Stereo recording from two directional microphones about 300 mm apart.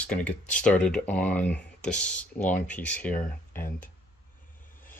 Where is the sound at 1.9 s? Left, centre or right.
Left.